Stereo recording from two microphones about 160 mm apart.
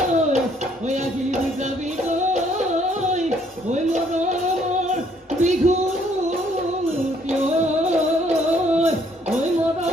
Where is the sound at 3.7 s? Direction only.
45° right (ahead or behind).